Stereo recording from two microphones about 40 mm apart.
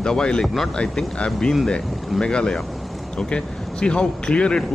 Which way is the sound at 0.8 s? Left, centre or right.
Left.